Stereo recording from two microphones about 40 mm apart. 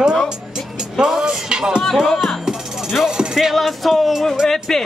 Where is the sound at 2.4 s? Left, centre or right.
Centre.